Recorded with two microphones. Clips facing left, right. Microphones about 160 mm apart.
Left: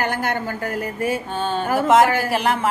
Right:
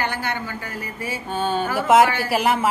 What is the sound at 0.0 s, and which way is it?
Speech, 45° left (ahead or behind).